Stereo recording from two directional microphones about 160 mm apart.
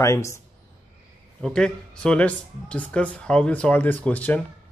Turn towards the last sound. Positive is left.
turn(degrees=10)  # may be behind; listen again after turning